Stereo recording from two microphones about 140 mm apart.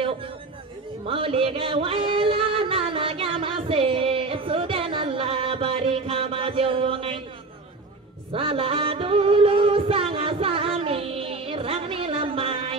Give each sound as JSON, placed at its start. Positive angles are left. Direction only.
{"t": 1.0, "sound": "music", "side_deg": -40}
{"t": 8.3, "sound": "music", "side_deg": -40}